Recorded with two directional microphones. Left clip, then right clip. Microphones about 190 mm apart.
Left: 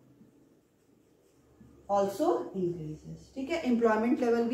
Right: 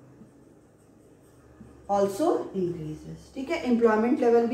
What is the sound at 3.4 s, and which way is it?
A woman's voice, 25° left (ahead or behind).